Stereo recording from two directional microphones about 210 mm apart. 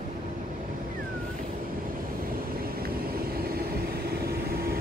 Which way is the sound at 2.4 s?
45° right (ahead or behind).